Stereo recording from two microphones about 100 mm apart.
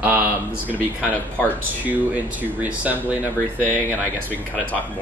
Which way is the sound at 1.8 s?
15° right (ahead or behind).